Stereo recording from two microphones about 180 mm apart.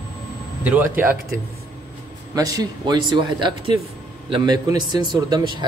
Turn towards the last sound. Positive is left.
turn(degrees=-25)  # may be behind; listen again after turning